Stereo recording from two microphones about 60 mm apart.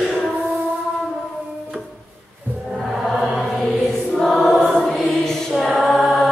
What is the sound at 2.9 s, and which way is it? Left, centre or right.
Choir, centre.